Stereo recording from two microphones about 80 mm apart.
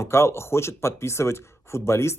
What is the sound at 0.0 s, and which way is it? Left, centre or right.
Speech, left.